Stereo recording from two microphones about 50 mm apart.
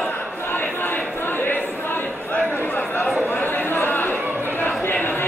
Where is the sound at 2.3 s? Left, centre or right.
Left.